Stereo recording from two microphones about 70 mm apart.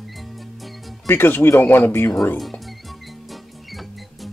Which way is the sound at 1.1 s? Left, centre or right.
Left.